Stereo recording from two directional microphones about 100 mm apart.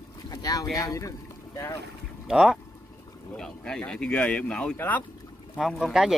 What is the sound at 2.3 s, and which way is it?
Speech, 5° right (ahead or behind).